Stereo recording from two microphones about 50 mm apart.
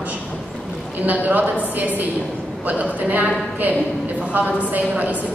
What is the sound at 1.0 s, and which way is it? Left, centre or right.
A woman's voice, right.